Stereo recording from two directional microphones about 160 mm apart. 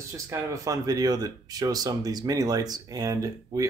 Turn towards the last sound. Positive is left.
turn(degrees=-20)  # may be behind; listen again after turning